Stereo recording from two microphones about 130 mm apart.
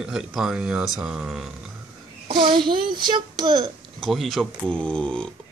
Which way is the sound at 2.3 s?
40° right (ahead or behind).